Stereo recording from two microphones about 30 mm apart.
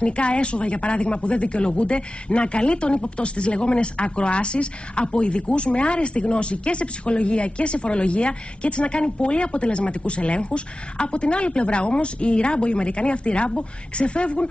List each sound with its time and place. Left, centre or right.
0.0 s speech: left